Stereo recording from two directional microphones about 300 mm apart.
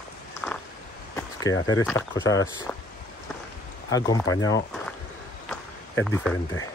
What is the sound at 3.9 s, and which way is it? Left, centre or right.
Speech, centre.